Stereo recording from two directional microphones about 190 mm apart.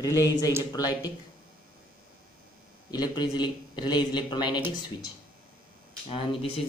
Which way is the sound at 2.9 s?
20° left (ahead or behind).